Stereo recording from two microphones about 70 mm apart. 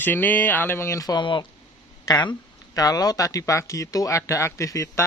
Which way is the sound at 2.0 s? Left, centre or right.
Left.